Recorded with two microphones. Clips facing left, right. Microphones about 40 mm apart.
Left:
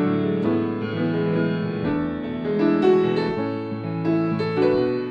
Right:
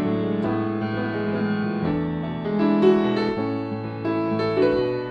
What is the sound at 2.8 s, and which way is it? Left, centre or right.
Music, right.